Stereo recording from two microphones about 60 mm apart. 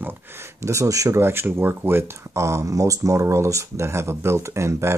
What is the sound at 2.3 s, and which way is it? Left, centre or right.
Speech, right.